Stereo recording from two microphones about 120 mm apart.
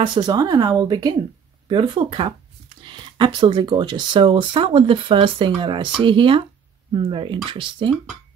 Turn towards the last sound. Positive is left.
turn(degrees=-45)  # may be behind; listen again after turning